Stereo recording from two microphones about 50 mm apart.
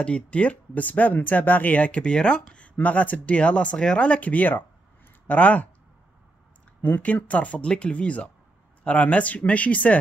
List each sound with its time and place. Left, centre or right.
0.0 s speech: left
2.7 s speech: left
6.8 s speech: left